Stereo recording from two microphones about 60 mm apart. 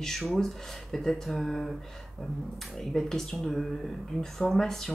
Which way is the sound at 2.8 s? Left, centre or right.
Centre.